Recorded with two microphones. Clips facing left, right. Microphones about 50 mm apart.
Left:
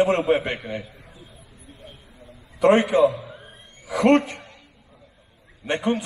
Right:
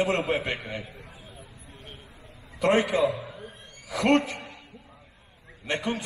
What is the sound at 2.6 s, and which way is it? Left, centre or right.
Speech, left.